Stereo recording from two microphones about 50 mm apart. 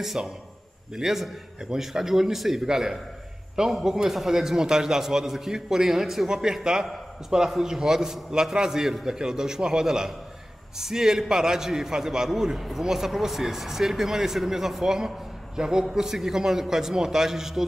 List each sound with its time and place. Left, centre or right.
0.0 s a man's voice: centre